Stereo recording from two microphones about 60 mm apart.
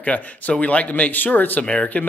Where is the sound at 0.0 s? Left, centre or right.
Left.